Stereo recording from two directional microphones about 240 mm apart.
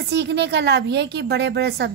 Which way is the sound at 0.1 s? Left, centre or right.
Right.